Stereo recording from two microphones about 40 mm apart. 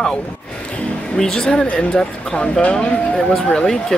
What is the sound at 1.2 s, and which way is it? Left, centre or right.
Speech, centre.